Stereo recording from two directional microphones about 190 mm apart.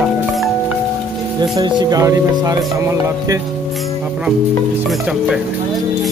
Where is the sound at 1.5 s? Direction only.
20° right (ahead or behind).